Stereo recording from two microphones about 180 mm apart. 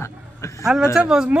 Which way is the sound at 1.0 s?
5° right (ahead or behind).